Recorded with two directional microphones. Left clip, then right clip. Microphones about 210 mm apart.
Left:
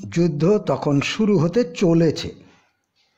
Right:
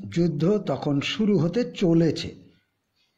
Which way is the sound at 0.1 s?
15° left (ahead or behind).